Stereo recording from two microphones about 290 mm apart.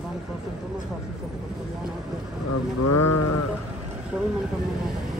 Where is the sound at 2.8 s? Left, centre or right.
Left.